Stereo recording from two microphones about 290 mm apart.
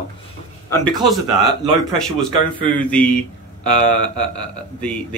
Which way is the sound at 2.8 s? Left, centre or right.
Centre.